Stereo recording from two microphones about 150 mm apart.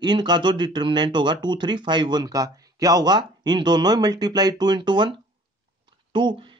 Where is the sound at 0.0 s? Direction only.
30° right (ahead or behind).